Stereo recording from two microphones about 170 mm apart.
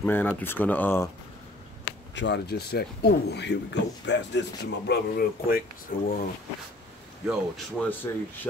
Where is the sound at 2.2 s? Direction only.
80° left.